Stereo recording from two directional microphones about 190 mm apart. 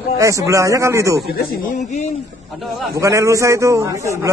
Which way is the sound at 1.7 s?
40° left (ahead or behind).